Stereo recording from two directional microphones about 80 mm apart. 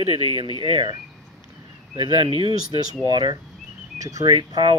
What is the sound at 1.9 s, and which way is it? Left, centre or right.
Speech, right.